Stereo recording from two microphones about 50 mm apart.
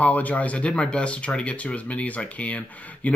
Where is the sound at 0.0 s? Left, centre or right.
Left.